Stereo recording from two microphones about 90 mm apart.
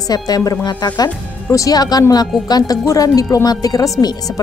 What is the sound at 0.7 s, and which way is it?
A woman's voice, 50° left (ahead or behind).